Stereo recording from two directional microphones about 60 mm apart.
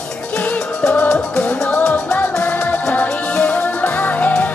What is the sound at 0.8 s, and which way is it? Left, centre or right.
Music, left.